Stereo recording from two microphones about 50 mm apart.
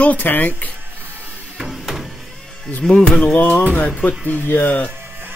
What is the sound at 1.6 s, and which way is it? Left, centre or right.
Music, centre.